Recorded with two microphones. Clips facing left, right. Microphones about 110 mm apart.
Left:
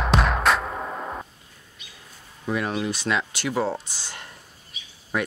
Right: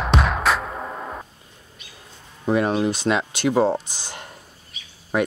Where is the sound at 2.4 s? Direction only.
35° right (ahead or behind).